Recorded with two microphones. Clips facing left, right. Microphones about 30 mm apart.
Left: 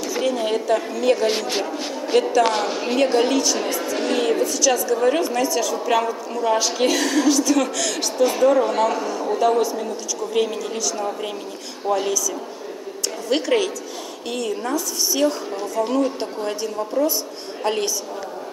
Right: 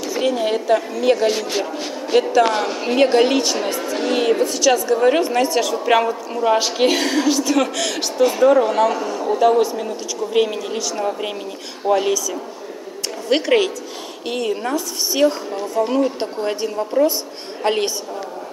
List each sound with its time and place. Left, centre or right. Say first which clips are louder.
0.2 s speech: right 3 dB; centre
3.0 s speech: right 4 dB; right
13.3 s speech: right 4 dB; right